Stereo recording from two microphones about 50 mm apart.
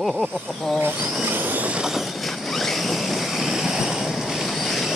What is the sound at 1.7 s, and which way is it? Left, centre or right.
Train, centre.